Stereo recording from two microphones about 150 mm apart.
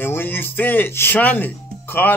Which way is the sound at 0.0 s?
15° left (ahead or behind).